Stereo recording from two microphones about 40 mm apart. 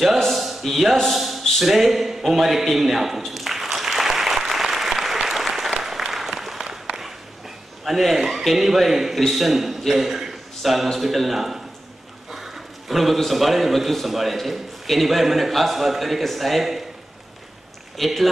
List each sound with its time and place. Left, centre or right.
0.3 s a sound: centre
1.1 s a man's voice: centre
3.2 s applause: centre
5.7 s applause: centre
6.1 s applause: centre
7.0 s a sound: centre
8.4 s a man's voice: centre
17.9 s speech: centre